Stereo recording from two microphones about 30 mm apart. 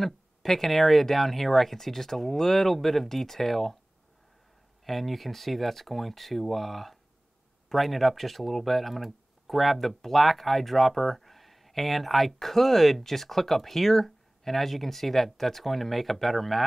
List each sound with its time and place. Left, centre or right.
0.0 s speech: centre
4.8 s speech: centre